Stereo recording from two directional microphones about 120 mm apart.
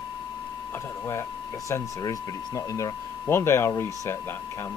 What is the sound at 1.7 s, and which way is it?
Speech, 30° left (ahead or behind).